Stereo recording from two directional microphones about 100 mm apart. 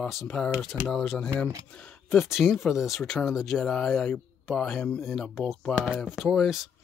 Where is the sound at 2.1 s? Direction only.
Centre (ahead or behind).